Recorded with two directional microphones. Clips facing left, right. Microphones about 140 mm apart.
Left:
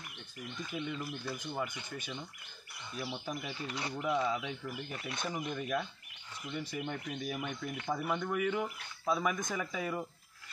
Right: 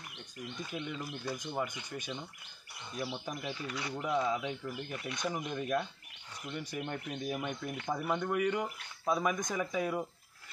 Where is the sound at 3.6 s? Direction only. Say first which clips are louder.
Even; 25° left (ahead or behind).